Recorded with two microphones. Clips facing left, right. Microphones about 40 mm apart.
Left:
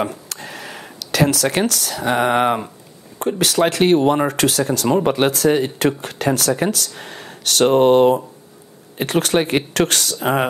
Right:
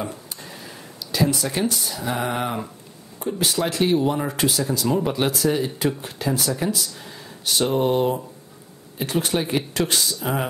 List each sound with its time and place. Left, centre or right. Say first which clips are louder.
0.0 s speech: left 7 dB; left
3.2 s speech: left 6 dB; left
4.8 s speech: left 6 dB; left
10.1 s speech: left 7 dB; left